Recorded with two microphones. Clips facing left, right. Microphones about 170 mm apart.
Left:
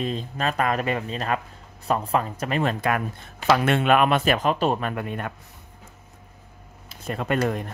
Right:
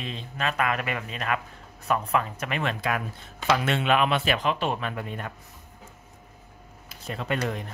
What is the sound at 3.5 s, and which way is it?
Speech, 50° left (ahead or behind).